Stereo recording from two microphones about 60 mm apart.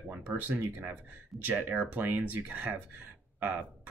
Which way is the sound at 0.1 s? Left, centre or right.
Right.